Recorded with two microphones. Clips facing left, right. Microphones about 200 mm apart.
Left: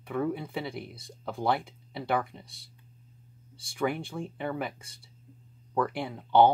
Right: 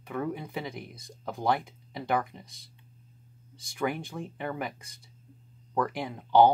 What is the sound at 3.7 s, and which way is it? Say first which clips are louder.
Speech: left 1 dB; 5° left (ahead or behind).